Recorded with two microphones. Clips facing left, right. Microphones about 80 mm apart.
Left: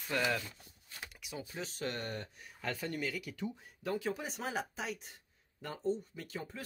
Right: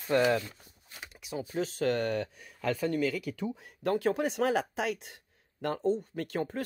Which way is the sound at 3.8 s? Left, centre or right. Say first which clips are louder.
Right 9 dB; right.